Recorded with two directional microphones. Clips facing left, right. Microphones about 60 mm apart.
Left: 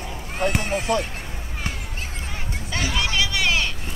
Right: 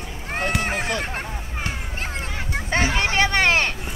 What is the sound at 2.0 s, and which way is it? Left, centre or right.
Hubbub, right.